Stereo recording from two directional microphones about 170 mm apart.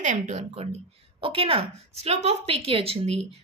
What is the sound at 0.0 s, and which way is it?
A woman's voice, 45° right (ahead or behind).